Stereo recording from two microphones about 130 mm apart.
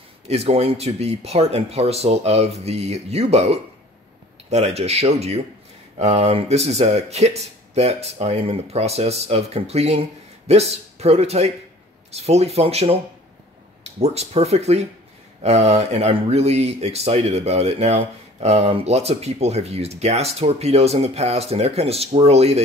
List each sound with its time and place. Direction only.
0.3 s speech: 55° right (ahead or behind)